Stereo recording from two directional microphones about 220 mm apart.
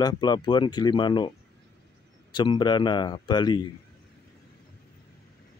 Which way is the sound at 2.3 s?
20° left (ahead or behind).